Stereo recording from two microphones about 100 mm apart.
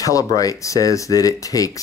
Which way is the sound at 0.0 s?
35° left (ahead or behind).